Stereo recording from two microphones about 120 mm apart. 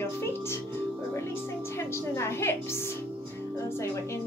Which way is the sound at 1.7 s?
20° left (ahead or behind).